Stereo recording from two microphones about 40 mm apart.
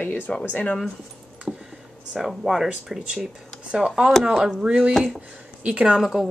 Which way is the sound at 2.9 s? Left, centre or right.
Right.